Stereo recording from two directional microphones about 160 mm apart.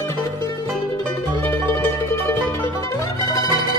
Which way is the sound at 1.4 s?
15° left (ahead or behind).